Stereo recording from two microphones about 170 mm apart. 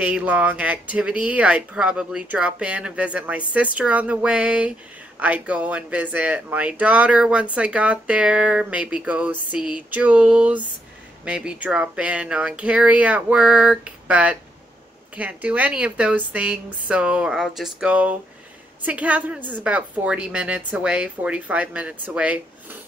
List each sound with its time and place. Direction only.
0.0 s speech: 5° right (ahead or behind)